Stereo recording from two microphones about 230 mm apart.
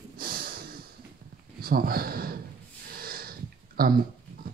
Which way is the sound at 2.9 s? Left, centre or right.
Right.